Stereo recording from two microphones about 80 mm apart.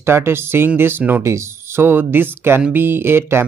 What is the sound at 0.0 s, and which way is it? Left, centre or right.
Speech, right.